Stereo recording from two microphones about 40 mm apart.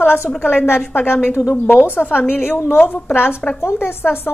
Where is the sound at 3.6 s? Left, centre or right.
Left.